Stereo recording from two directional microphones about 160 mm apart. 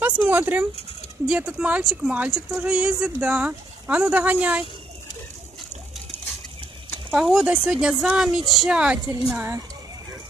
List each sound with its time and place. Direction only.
0.0 s speech: 10° right (ahead or behind)
7.1 s speech: 5° right (ahead or behind)